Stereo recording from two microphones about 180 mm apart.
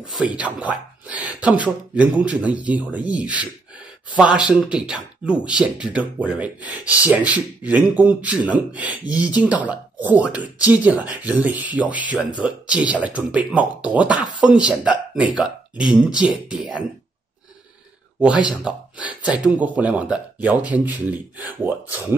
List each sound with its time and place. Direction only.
0.0 s speech: 5° right (ahead or behind)
18.5 s speech: 5° right (ahead or behind)